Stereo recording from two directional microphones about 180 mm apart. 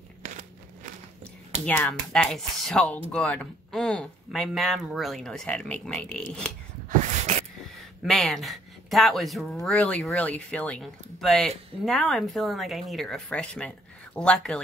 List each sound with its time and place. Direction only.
1.7 s speech: 5° left (ahead or behind)
6.9 s a sound: 40° right (ahead or behind)
8.0 s speech: centre (ahead or behind)